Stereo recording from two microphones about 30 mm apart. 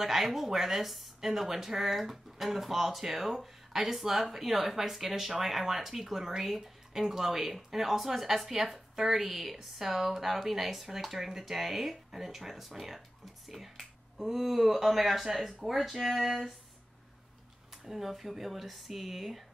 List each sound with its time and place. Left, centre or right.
0.0 s speech: centre
17.8 s speech: centre